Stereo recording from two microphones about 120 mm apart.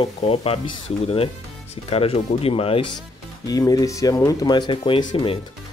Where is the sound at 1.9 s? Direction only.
55° left (ahead or behind).